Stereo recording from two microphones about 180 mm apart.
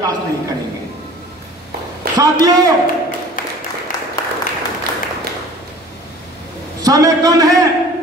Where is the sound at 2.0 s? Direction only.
60° right (ahead or behind).